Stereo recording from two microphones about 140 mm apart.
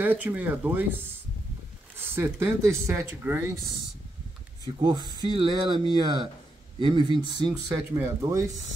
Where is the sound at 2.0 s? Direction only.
15° right (ahead or behind).